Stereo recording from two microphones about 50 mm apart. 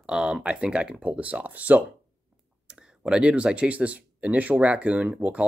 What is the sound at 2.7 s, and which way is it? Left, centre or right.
Speech, centre.